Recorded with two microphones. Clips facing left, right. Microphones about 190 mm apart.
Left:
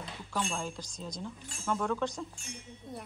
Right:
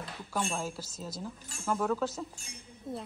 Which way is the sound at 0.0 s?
5° right (ahead or behind).